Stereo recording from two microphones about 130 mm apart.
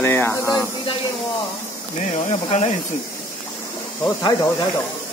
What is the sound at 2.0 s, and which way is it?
Insect, 60° left (ahead or behind).